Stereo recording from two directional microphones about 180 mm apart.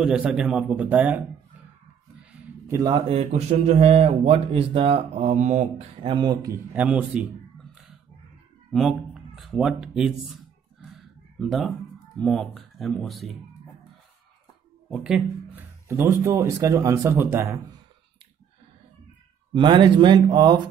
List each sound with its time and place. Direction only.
0.0 s a man's voice: 5° right (ahead or behind)
2.8 s speech: 30° right (ahead or behind)
6.0 s speech: 25° right (ahead or behind)
6.7 s speech: 10° right (ahead or behind)
11.3 s a man's voice: centre (ahead or behind)
14.9 s speech: 5° right (ahead or behind)
15.9 s speech: 15° right (ahead or behind)
19.5 s speech: 25° right (ahead or behind)